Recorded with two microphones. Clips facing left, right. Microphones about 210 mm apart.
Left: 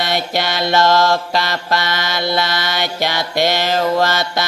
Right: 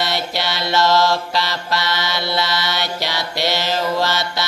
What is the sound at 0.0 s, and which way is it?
Mantra, 50° left (ahead or behind).